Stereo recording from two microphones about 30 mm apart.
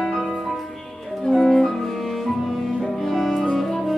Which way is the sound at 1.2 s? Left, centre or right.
Centre.